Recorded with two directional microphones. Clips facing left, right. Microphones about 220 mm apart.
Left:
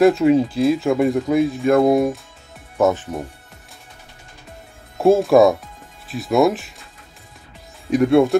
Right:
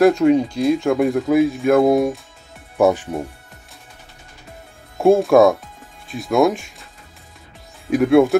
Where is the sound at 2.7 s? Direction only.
10° right (ahead or behind).